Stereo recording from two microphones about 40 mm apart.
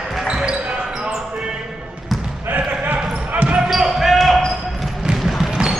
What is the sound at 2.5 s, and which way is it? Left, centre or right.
Basketball bounce, right.